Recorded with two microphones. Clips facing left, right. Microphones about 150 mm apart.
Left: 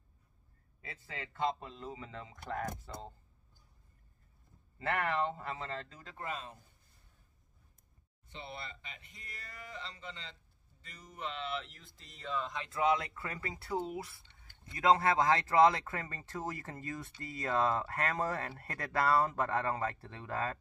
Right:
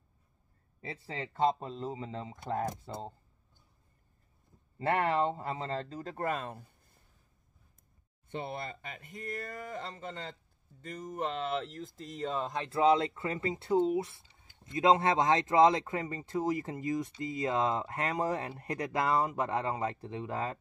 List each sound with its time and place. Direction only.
1.0 s speech: 30° right (ahead or behind)
4.7 s speech: 30° right (ahead or behind); by 6.6 s 55° right (ahead or behind)
8.3 s speech: 50° right (ahead or behind); by 20.5 s 20° right (ahead or behind)